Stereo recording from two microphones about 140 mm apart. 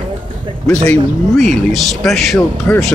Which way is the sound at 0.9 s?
Centre (ahead or behind).